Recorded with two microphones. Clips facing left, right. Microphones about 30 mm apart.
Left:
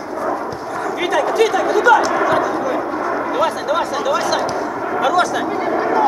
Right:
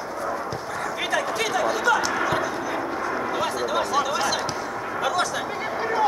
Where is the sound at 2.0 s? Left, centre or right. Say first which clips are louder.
Left 8 dB; centre.